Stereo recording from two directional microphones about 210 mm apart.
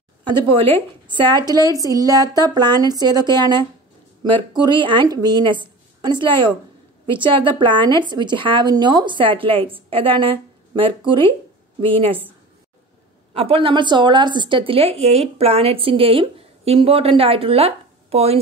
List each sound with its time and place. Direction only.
0.2 s a woman's voice: 25° right (ahead or behind)
13.3 s a woman's voice: 25° right (ahead or behind)